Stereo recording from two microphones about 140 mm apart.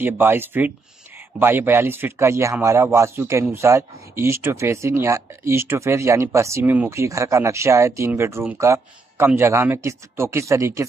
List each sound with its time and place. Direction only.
0.0 s speech: 15° right (ahead or behind)